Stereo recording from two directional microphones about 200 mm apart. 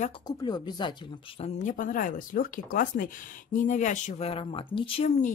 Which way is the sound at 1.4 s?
40° left (ahead or behind).